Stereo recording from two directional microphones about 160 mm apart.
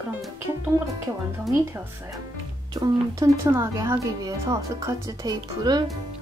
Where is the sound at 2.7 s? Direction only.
25° right (ahead or behind).